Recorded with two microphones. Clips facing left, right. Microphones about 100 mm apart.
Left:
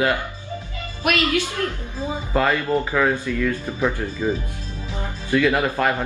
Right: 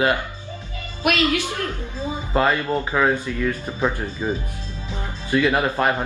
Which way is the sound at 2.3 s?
20° right (ahead or behind).